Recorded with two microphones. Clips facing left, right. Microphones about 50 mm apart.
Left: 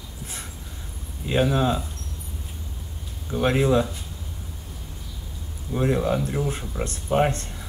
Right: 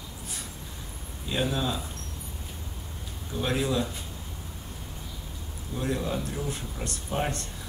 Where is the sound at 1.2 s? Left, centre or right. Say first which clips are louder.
Left 7 dB; left.